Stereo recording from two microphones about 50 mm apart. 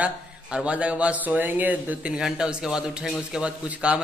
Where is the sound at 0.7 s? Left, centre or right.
Right.